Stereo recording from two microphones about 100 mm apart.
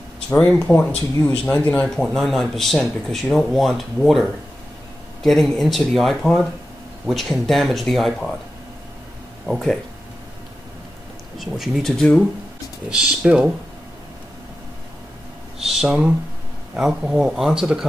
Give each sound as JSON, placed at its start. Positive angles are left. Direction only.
{"t": 0.3, "sound": "speech", "side_deg": 15}
{"t": 2.0, "sound": "speech", "side_deg": 5}
{"t": 9.5, "sound": "speech", "side_deg": 0}
{"t": 11.3, "sound": "speech", "side_deg": 0}
{"t": 12.9, "sound": "speech", "side_deg": -5}
{"t": 15.6, "sound": "speech", "side_deg": -5}